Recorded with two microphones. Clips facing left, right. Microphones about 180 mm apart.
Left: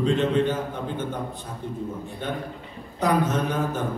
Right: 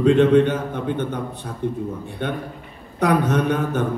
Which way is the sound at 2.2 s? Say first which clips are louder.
Right 5 dB; 65° right (ahead or behind).